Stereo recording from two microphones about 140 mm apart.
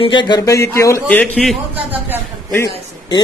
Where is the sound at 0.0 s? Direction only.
35° left (ahead or behind).